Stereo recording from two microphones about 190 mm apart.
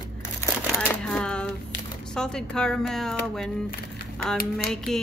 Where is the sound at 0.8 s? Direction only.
5° left (ahead or behind).